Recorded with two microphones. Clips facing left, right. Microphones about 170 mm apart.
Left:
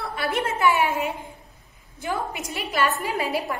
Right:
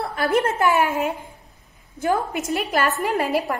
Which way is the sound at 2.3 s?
Centre (ahead or behind).